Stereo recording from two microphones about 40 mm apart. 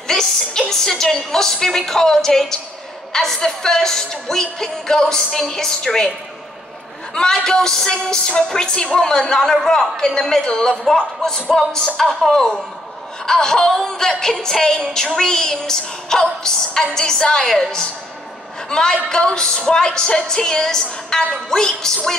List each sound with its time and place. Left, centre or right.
0.1 s a woman's voice: centre
7.2 s a woman's voice: centre